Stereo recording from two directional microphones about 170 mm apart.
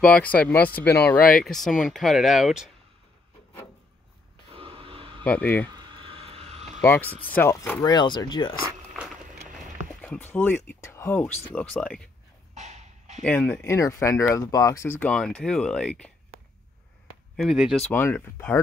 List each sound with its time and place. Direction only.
0.0 s speech: 5° left (ahead or behind)
4.5 s a sound: 35° right (ahead or behind)
5.2 s speech: 10° left (ahead or behind)
5.7 s vehicle: 25° right (ahead or behind)
6.8 s speech: 10° left (ahead or behind)
7.9 s speech: 25° left (ahead or behind)
8.6 s a sound: 5° right (ahead or behind)
10.0 s speech: 10° left (ahead or behind)
12.5 s a sound: 40° right (ahead or behind)
13.2 s speech: 10° left (ahead or behind)
17.4 s speech: centre (ahead or behind)
17.9 s speech: 10° left (ahead or behind)